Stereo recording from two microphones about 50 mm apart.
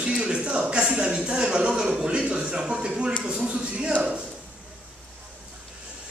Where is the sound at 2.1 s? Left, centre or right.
Right.